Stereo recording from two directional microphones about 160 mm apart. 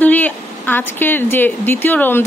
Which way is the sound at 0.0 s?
10° left (ahead or behind).